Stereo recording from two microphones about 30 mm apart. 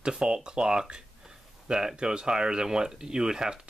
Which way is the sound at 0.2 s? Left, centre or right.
Right.